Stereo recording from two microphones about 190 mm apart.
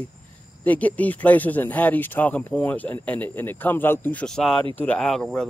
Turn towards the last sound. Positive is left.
turn(degrees=5)  # may be behind; listen again after turning